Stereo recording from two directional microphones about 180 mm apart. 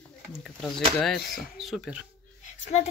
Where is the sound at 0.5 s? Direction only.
Centre (ahead or behind).